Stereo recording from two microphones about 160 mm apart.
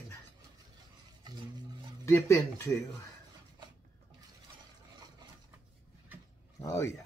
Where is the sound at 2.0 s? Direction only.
15° left (ahead or behind).